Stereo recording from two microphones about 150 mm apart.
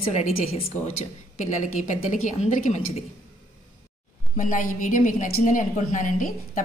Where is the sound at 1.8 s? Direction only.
55° left (ahead or behind).